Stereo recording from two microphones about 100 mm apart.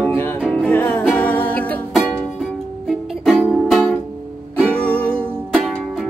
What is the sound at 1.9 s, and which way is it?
Music, centre (ahead or behind).